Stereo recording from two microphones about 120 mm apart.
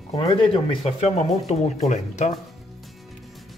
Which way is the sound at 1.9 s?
80° left.